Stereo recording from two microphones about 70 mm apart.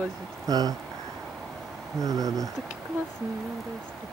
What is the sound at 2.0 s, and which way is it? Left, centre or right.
Speech, right.